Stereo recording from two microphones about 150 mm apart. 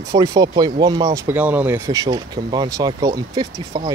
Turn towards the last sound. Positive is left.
turn(degrees=-30)  # may be behind; listen again after turning